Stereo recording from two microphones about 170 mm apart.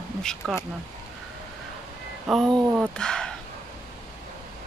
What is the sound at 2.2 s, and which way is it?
Speech, centre (ahead or behind).